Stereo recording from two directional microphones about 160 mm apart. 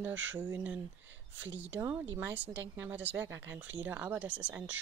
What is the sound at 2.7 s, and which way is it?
Speech, 10° right (ahead or behind).